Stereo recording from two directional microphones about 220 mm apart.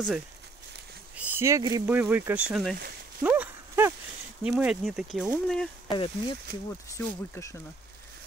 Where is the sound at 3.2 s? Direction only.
5° right (ahead or behind).